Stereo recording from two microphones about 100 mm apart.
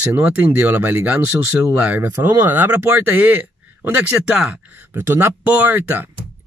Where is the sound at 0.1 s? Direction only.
15° right (ahead or behind).